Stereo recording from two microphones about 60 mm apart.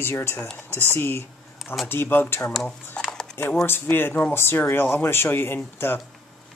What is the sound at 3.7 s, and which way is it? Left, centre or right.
Speech, left.